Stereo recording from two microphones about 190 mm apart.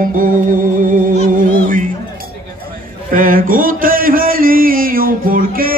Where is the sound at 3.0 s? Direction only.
45° right (ahead or behind).